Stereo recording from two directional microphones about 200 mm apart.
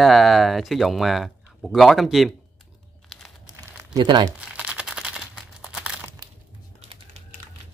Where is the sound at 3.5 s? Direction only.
10° right (ahead or behind).